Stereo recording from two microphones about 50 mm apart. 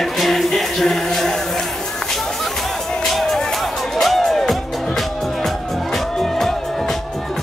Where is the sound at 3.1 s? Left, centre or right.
Centre.